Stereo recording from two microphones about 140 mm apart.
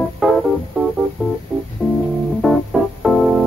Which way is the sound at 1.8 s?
5° left (ahead or behind).